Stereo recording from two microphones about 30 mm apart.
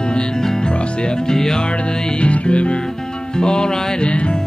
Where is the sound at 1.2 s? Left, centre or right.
Centre.